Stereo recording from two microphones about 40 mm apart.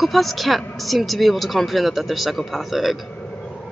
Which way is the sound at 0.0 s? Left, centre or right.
Centre.